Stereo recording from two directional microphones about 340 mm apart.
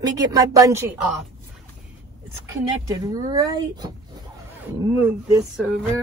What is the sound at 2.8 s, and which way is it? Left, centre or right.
Speech, centre.